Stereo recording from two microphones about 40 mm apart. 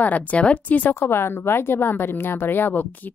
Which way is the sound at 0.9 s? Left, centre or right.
Left.